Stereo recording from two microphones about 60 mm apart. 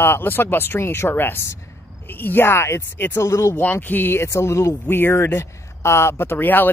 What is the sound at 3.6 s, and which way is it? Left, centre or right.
Speech, left.